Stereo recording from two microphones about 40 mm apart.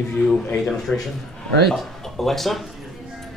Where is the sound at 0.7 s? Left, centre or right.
Centre.